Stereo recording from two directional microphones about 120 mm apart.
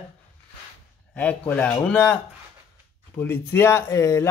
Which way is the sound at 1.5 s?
15° left (ahead or behind).